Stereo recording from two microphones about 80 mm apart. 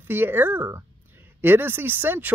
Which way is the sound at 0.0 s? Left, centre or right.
Right.